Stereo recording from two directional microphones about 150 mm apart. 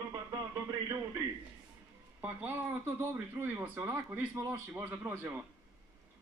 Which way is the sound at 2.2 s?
15° right (ahead or behind).